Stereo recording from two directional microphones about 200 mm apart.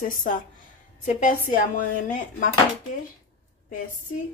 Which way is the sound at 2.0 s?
40° left (ahead or behind).